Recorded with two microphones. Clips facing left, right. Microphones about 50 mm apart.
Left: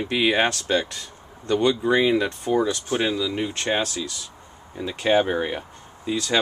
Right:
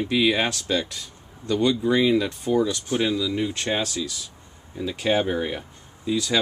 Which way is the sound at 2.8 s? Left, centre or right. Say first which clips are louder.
Even; centre.